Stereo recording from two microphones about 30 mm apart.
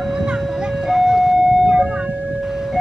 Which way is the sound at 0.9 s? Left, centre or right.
Centre.